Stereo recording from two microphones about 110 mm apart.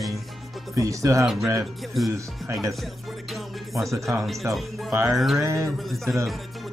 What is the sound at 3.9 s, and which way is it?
Speech, 30° right (ahead or behind).